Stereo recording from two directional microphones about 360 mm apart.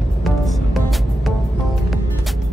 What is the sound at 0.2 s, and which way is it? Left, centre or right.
Music, centre.